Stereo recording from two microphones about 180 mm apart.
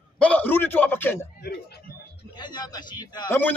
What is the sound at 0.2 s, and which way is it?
A man's voice, 10° left (ahead or behind).